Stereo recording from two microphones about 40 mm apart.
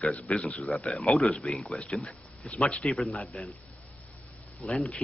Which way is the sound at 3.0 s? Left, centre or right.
Left.